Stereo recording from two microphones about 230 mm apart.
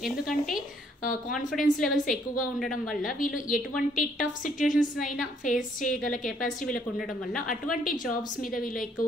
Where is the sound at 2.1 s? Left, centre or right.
Left.